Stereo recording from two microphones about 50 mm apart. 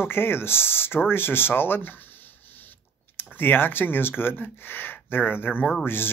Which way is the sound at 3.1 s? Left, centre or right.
Left.